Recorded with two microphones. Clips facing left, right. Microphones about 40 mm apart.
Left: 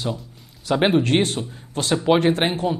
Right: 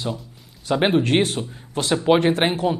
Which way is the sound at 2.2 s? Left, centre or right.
Centre.